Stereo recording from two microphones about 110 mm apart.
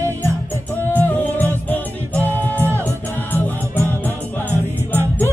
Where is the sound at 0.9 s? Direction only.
15° left (ahead or behind).